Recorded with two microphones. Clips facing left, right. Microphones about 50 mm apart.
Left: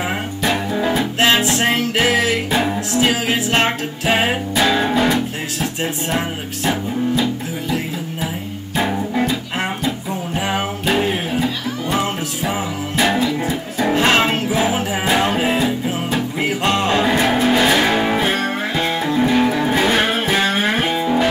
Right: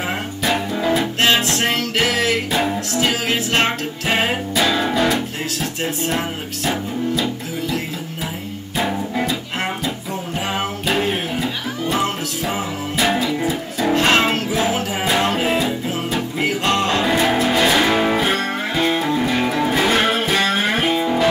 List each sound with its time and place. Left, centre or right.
0.5 s music: centre
1.7 s music: centre
8.7 s music: centre
13.7 s music: centre
17.1 s music: centre
21.0 s guitar: centre